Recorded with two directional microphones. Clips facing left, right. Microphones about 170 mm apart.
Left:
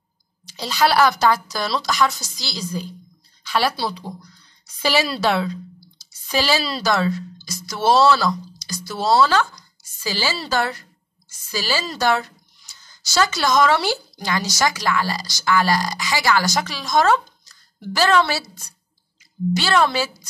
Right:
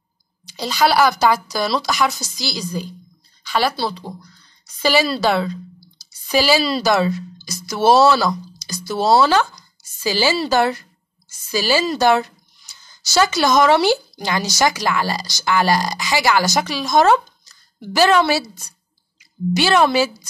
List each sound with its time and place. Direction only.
0.6 s speech: centre (ahead or behind)
6.8 s a woman's voice: 15° right (ahead or behind)